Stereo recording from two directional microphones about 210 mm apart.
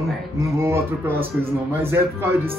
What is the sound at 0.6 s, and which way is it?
Speech, 10° right (ahead or behind).